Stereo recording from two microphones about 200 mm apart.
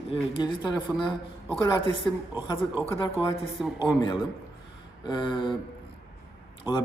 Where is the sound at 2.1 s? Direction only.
10° left (ahead or behind).